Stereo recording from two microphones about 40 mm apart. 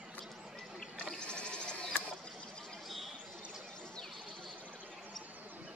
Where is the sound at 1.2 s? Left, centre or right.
Left.